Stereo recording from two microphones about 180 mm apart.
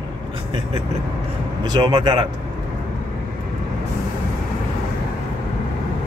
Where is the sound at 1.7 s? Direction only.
25° right (ahead or behind).